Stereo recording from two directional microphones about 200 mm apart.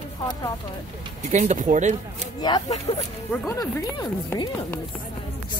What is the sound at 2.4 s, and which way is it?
Speech, 20° left (ahead or behind).